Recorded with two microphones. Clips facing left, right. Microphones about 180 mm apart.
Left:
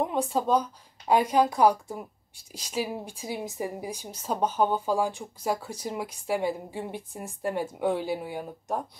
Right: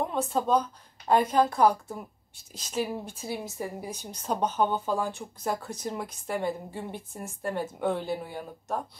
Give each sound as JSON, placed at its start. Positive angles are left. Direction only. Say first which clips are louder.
{"t": 0.0, "sound": "speech", "louder": "left 1 dB", "side_deg": 15}